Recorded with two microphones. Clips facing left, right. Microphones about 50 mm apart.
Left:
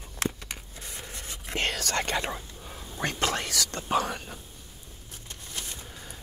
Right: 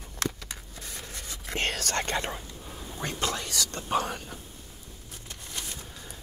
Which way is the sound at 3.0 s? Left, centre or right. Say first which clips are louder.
Left 3 dB; left.